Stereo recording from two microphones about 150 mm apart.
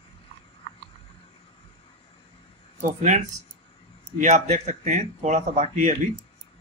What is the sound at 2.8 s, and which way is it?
Speech, 55° right (ahead or behind).